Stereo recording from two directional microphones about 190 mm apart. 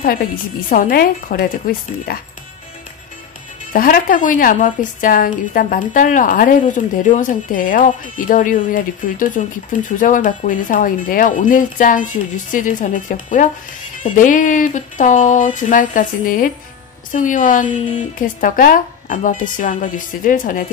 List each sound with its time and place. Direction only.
0.0 s a woman's voice: 50° left (ahead or behind)
3.7 s a woman's voice: 50° left (ahead or behind)
17.6 s speech: 25° left (ahead or behind)
18.2 s a woman's voice: 45° left (ahead or behind)